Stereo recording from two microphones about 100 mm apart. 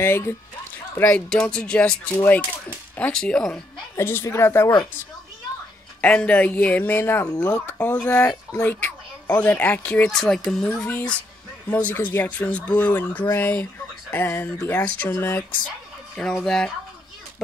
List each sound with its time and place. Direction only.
0.0 s speech: 25° left (ahead or behind)
0.9 s speech: 15° left (ahead or behind)
3.9 s speech: 25° left (ahead or behind)
5.9 s speech: 10° left (ahead or behind)
7.2 s speech: 10° left (ahead or behind)
10.1 s speech: 5° left (ahead or behind)
11.7 s speech: 20° left (ahead or behind)
16.4 s speech: 5° left (ahead or behind)